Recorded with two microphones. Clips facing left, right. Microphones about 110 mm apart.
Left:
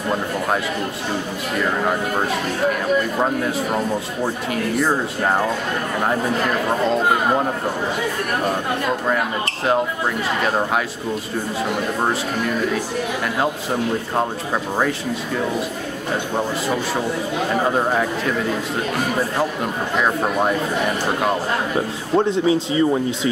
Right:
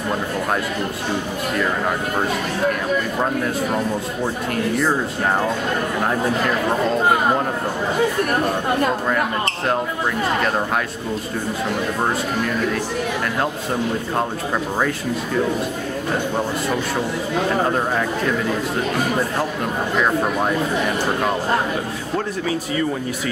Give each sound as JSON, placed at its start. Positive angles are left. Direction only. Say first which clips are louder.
{"t": 3.2, "sound": "speech", "louder": "left 1 dB", "side_deg": 5}
{"t": 17.6, "sound": "speech", "louder": "left 1 dB", "side_deg": 5}
{"t": 20.0, "sound": "speech", "louder": "left 1 dB", "side_deg": 5}
{"t": 22.1, "sound": "speech", "louder": "left 7 dB", "side_deg": 25}